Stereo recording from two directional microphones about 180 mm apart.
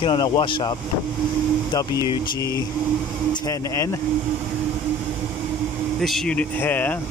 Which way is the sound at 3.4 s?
15° left (ahead or behind).